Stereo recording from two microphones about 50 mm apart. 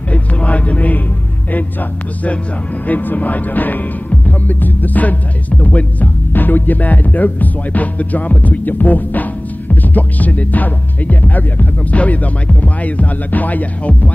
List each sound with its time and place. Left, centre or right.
0.1 s speech: left
2.9 s speech: left